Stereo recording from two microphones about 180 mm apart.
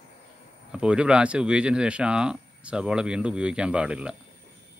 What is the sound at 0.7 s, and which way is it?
Speech, 5° right (ahead or behind).